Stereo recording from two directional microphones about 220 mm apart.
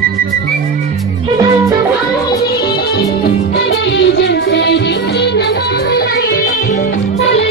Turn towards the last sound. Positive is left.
turn(degrees=40)  # may be behind; listen again after turning